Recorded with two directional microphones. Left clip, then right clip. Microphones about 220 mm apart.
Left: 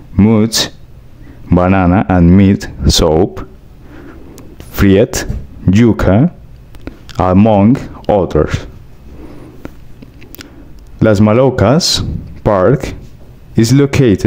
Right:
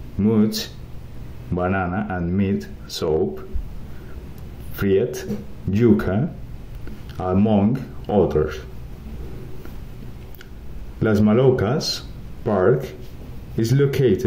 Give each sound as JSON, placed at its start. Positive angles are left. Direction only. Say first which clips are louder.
{"t": 0.2, "sound": "speech", "louder": "left 10 dB", "side_deg": 40}
{"t": 4.7, "sound": "speech", "louder": "left 10 dB", "side_deg": 45}
{"t": 6.8, "sound": "a sound", "louder": "left 14 dB", "side_deg": 45}
{"t": 7.4, "sound": "speech", "louder": "left 11 dB", "side_deg": 40}
{"t": 11.0, "sound": "speech", "louder": "left 9 dB", "side_deg": 45}